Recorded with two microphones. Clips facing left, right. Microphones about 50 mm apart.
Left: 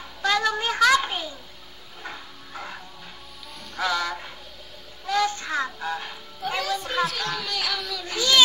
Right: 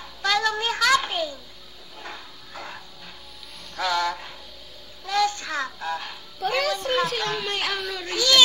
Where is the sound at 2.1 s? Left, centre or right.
Centre.